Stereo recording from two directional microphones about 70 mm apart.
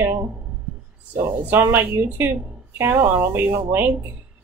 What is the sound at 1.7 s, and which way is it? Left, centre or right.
Speech, right.